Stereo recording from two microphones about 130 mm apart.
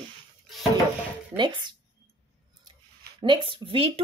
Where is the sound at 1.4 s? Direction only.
35° right (ahead or behind).